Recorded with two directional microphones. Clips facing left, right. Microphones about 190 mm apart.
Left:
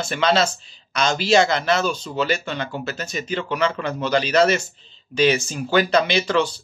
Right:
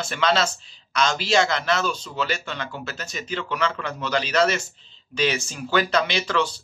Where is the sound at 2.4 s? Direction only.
35° left (ahead or behind).